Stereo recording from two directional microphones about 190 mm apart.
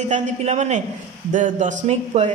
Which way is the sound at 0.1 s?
35° right (ahead or behind).